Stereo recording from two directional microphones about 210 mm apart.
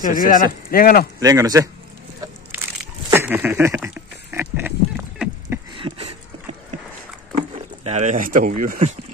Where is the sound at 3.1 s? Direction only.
10° right (ahead or behind).